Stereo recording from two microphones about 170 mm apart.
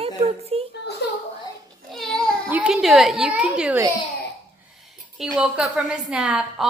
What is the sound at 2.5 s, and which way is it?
A woman's voice, 5° right (ahead or behind).